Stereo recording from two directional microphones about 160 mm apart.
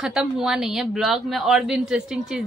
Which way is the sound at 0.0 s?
5° right (ahead or behind).